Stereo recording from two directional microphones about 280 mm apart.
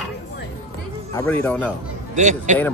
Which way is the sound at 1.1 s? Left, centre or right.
Centre.